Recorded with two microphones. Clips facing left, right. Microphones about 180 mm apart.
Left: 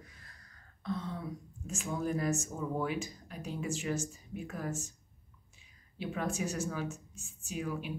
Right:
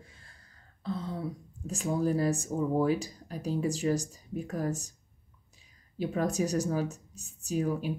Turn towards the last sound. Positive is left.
turn(degrees=-40)  # may be behind; listen again after turning